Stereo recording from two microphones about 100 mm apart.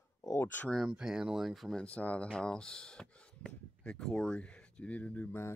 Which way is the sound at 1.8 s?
15° left (ahead or behind).